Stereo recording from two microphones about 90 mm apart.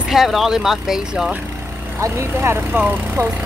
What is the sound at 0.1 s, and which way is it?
Speech, centre (ahead or behind).